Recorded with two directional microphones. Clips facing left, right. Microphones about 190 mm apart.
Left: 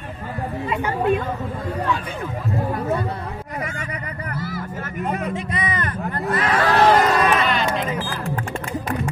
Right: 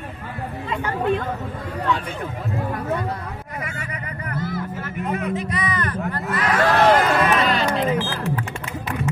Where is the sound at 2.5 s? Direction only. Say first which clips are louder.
Left 3 dB; 35° left (ahead or behind).